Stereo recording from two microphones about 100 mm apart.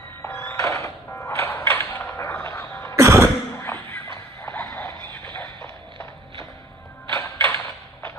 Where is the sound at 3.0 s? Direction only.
30° right (ahead or behind).